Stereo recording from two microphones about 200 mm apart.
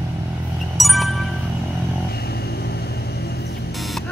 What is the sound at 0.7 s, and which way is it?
Music, centre (ahead or behind).